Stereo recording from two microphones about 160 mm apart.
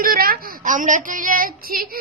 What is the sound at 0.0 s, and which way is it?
A woman's voice, 65° right (ahead or behind).